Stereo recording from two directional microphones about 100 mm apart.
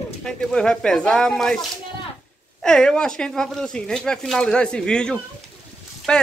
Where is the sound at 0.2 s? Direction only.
5° left (ahead or behind).